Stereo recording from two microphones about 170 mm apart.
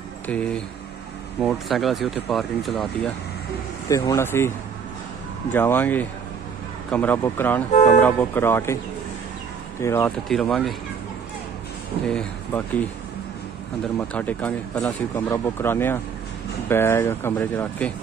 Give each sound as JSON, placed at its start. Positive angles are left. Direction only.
{"t": 0.3, "sound": "speech", "side_deg": 5}
{"t": 3.9, "sound": "speech", "side_deg": 20}
{"t": 5.5, "sound": "speech", "side_deg": 10}
{"t": 7.7, "sound": "speech", "side_deg": 40}
{"t": 8.0, "sound": "speech", "side_deg": 10}
{"t": 9.8, "sound": "speech", "side_deg": 15}
{"t": 10.2, "sound": "speech", "side_deg": 5}
{"t": 12.1, "sound": "speech", "side_deg": 5}
{"t": 13.9, "sound": "speech", "side_deg": 10}